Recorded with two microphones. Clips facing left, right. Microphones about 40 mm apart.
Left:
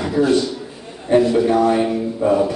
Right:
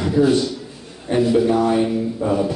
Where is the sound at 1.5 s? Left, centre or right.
Centre.